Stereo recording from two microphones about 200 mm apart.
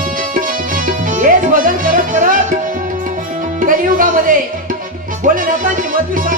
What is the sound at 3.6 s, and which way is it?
Music, 45° right (ahead or behind).